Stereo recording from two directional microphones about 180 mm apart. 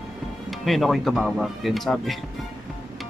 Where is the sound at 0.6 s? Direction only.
Centre (ahead or behind).